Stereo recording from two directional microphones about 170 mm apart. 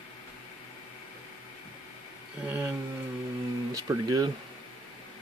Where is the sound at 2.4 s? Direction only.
10° right (ahead or behind).